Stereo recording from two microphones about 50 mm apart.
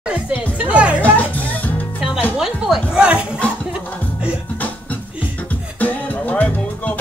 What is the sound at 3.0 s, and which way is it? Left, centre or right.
Music, right.